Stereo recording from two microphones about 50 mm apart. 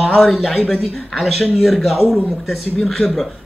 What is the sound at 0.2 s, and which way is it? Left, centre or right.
Speech, centre.